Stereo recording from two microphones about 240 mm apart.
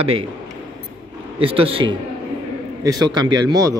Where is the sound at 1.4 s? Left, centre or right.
Right.